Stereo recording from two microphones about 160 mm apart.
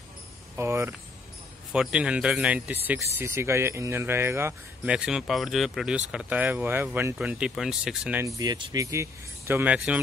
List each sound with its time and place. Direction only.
0.6 s speech: 15° right (ahead or behind)
1.7 s speech: 5° right (ahead or behind)
8.2 s speech: 20° right (ahead or behind)